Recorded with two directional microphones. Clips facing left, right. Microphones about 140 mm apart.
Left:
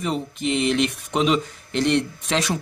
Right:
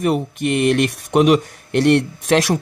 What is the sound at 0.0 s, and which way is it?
A man's voice, 65° right (ahead or behind).